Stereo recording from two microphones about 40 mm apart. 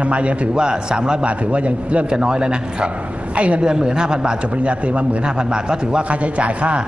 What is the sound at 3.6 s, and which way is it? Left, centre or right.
Speech, centre.